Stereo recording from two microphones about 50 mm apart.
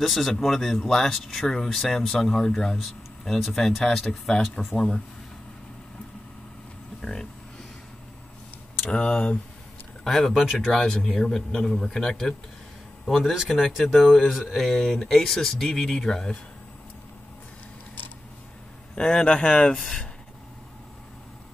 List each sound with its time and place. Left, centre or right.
0.0 s a man's voice: centre
7.0 s a sound: centre
8.8 s a man's voice: centre
10.0 s a man's voice: centre
14.5 s a man's voice: centre
18.9 s a man's voice: centre
19.7 s a man's voice: centre